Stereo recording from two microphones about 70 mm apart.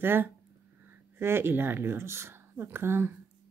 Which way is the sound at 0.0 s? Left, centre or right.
Right.